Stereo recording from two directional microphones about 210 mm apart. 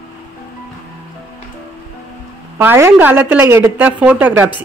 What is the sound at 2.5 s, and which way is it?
Speech, 10° right (ahead or behind).